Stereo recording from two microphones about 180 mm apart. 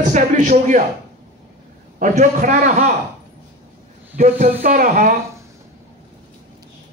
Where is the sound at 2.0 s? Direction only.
45° right (ahead or behind).